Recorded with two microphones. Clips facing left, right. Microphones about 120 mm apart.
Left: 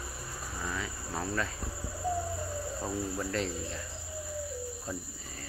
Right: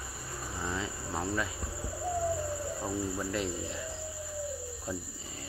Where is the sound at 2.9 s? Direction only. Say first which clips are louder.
Right 1 dB; 10° right (ahead or behind).